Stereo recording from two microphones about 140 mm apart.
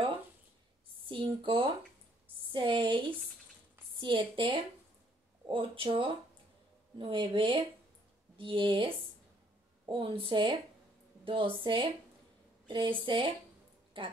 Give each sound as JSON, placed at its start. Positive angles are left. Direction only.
{"t": 1.0, "sound": "a woman's voice", "side_deg": -40}